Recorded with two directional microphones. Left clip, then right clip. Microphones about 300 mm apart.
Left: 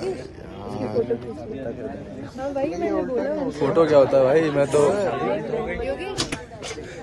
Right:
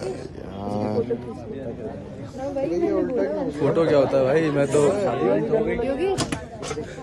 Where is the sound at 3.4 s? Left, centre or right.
Centre.